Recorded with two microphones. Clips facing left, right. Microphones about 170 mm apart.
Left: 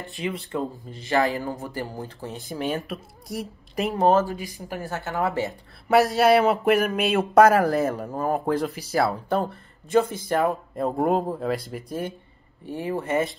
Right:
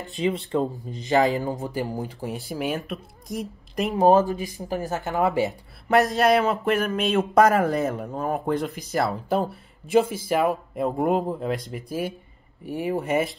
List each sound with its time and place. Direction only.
0.5 s speech: 20° right (ahead or behind)
2.4 s speech: 5° right (ahead or behind)
4.0 s speech: 15° right (ahead or behind)
5.9 s speech: 5° left (ahead or behind)
6.4 s speech: 15° left (ahead or behind); by 12.1 s centre (ahead or behind)
12.6 s speech: 15° right (ahead or behind)